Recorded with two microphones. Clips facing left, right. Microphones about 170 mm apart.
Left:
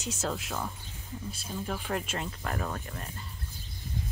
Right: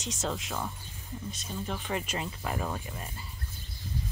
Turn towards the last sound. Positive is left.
turn(degrees=-10)  # may be behind; listen again after turning